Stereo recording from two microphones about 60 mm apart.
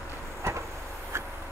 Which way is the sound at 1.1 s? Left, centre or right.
Right.